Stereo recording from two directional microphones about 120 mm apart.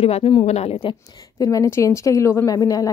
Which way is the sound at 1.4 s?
30° left (ahead or behind).